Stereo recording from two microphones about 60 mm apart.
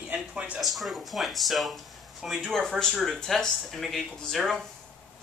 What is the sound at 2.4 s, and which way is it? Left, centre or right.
Speech, centre.